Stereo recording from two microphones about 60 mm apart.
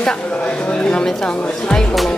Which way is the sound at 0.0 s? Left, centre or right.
Centre.